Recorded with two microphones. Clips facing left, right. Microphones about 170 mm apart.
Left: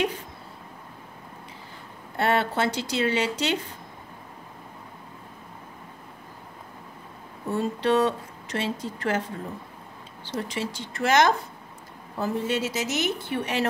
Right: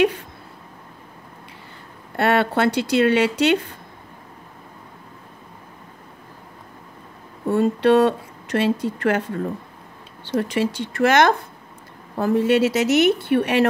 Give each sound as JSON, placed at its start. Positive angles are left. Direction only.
{"t": 2.1, "sound": "speech", "side_deg": -65}
{"t": 7.4, "sound": "speech", "side_deg": -60}
{"t": 10.3, "sound": "speech", "side_deg": -65}